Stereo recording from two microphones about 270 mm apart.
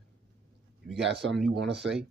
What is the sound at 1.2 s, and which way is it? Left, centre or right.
Speech, right.